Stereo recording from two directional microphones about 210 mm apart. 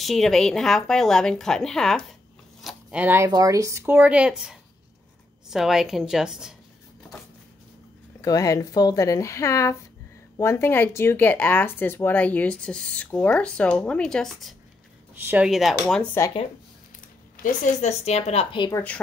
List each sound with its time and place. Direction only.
0.0 s speech: centre (ahead or behind)
2.6 s a sound: 5° right (ahead or behind)
3.3 s speech: 15° right (ahead or behind)
8.2 s speech: 15° left (ahead or behind); by 16.1 s centre (ahead or behind)
17.4 s a woman's voice: 35° left (ahead or behind)